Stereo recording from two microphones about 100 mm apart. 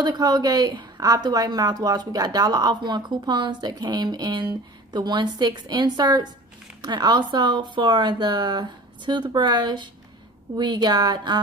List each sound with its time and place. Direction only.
0.0 s a woman's voice: 45° right (ahead or behind)